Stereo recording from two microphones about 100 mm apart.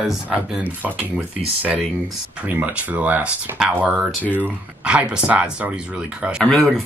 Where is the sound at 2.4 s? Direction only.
15° right (ahead or behind).